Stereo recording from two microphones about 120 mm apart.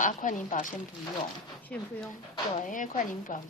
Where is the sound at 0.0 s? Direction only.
90° left.